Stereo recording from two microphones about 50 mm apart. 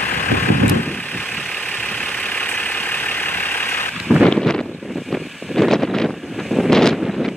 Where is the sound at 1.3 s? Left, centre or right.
Left.